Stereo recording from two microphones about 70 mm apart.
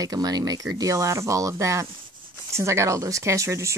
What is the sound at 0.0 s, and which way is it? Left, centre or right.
Speech, right.